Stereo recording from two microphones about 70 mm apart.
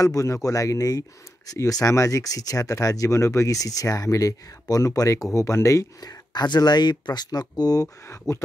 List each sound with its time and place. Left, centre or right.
0.0 s speech: left
8.3 s speech: left